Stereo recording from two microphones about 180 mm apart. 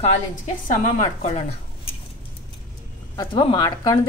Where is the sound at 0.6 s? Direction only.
45° left (ahead or behind).